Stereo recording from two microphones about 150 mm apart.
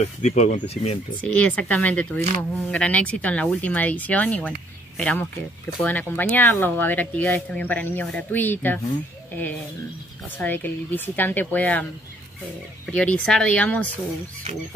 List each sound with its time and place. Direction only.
0.0 s speech: 50° left (ahead or behind)
1.2 s speech: 10° left (ahead or behind)
10.3 s speech: 10° left (ahead or behind)
12.8 s speech: 10° left (ahead or behind)